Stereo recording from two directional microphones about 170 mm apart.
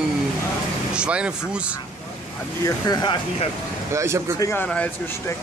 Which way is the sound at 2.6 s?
25° left (ahead or behind).